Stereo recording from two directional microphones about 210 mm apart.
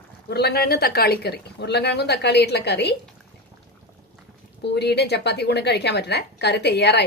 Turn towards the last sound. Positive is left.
turn(degrees=55)  # may be behind; listen again after turning